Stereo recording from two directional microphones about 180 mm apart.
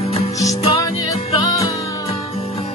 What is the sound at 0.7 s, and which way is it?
Music, 20° left (ahead or behind).